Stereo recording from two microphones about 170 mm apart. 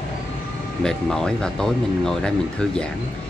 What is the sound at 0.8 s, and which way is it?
Speech, 5° left (ahead or behind).